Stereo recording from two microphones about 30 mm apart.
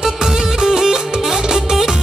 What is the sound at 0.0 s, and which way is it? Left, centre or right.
Music, centre.